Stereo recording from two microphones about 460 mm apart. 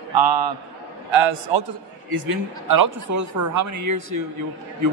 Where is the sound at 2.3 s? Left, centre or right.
Right.